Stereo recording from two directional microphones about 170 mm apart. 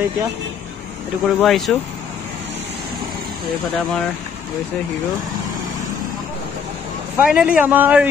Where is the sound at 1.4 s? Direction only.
Centre (ahead or behind).